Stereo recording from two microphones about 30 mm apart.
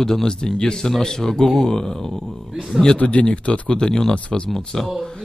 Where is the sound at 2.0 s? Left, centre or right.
Centre.